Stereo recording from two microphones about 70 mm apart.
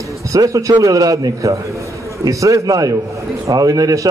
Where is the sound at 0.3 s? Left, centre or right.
Right.